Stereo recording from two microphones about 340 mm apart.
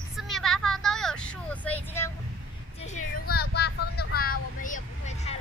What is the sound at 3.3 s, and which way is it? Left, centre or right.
Vehicle, left.